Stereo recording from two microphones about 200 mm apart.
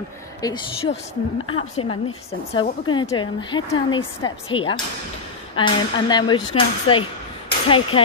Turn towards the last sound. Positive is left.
turn(degrees=25)  # may be behind; listen again after turning